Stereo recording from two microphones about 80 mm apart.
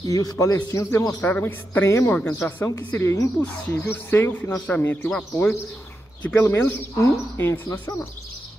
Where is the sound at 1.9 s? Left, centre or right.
Left.